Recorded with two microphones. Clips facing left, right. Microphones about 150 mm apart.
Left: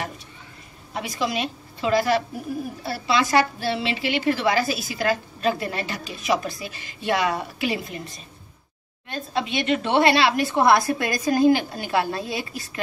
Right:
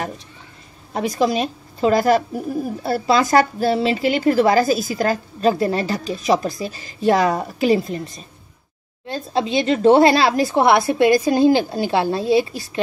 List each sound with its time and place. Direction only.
0.9 s a woman's voice: 40° right (ahead or behind)
9.0 s speech: 30° right (ahead or behind)